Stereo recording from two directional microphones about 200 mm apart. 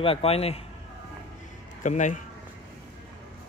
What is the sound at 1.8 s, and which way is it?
Speech, 40° left (ahead or behind).